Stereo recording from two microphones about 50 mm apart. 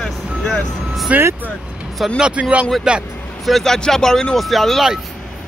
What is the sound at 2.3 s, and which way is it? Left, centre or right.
Speech, right.